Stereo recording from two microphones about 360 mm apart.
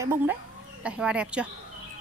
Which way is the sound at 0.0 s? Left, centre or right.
Centre.